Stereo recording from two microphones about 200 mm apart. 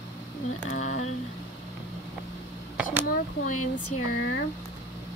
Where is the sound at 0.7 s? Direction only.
35° left (ahead or behind).